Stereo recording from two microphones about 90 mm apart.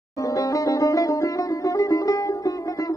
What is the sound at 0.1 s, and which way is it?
Music, 40° left (ahead or behind).